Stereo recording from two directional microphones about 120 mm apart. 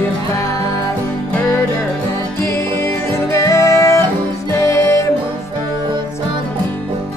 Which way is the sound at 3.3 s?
25° left (ahead or behind).